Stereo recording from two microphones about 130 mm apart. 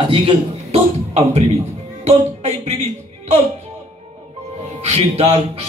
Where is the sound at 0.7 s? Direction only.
55° right (ahead or behind).